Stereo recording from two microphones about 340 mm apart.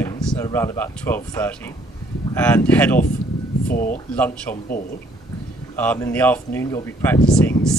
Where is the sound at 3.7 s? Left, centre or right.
Left.